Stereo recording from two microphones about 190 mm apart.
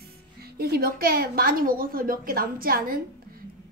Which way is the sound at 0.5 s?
55° right (ahead or behind).